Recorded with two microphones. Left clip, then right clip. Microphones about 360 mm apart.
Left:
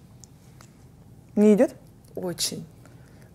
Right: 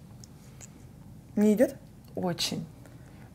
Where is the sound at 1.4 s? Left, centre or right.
Left.